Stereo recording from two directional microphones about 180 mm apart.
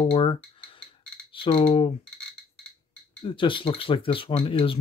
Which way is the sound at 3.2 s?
25° left (ahead or behind).